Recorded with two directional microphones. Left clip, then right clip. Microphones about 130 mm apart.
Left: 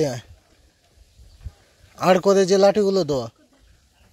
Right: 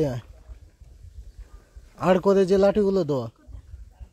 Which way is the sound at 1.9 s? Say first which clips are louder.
Left 3 dB; 15° right (ahead or behind).